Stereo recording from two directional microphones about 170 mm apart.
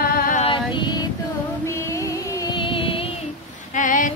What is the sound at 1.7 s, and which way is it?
Music, 15° left (ahead or behind).